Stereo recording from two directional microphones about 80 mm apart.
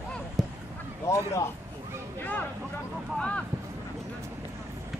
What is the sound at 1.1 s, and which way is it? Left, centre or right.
Speech, left.